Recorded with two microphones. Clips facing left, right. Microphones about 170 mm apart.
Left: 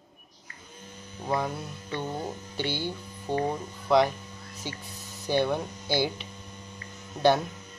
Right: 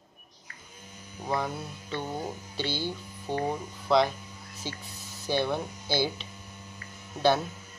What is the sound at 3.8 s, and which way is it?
Speech, 15° left (ahead or behind).